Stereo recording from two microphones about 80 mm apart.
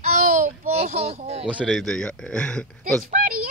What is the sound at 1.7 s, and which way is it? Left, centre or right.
Speech, centre.